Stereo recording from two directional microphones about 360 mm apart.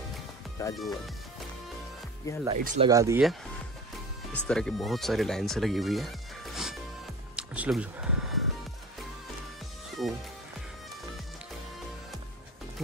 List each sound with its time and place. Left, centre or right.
0.6 s speech: centre
2.4 s speech: centre
2.9 s speech: centre
7.3 s music: centre
10.0 s speech: centre